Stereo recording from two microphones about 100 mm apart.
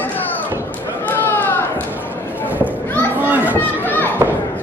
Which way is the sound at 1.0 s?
20° left (ahead or behind).